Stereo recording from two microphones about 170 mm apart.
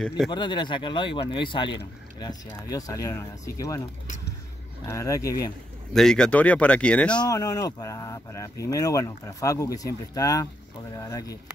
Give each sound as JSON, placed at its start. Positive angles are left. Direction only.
{"t": 0.3, "sound": "speech", "side_deg": 25}
{"t": 4.8, "sound": "speech", "side_deg": 20}
{"t": 5.9, "sound": "speech", "side_deg": 5}
{"t": 7.2, "sound": "speech", "side_deg": 20}